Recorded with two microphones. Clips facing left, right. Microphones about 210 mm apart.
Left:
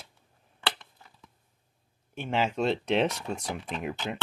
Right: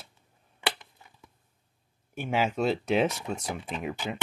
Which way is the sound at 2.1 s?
10° right (ahead or behind).